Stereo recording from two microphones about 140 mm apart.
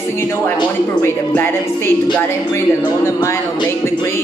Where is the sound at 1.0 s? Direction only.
15° left (ahead or behind).